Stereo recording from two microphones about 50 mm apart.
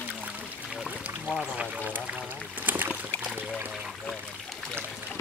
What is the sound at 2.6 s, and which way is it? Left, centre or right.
Boat, right.